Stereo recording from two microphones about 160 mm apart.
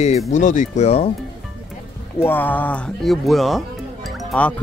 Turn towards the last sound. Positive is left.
turn(degrees=10)  # may be behind; listen again after turning